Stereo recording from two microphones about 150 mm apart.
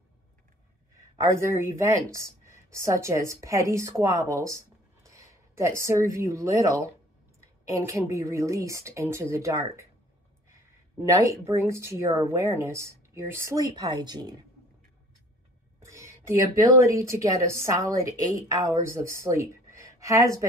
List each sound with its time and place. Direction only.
0.9 s speech: 20° right (ahead or behind)
15.8 s speech: 20° right (ahead or behind)
19.7 s a sound: 20° right (ahead or behind)